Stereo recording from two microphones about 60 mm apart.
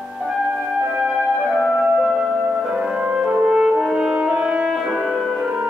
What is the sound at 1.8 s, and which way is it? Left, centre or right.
Music, centre.